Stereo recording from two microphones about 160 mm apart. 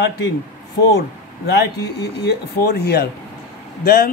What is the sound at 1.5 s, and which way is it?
Speech, 90° left.